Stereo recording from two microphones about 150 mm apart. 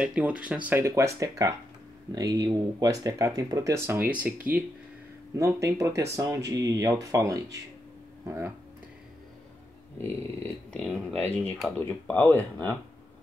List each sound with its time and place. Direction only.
0.0 s speech: 5° right (ahead or behind)
5.3 s speech: 20° right (ahead or behind)
9.9 s speech: 10° left (ahead or behind)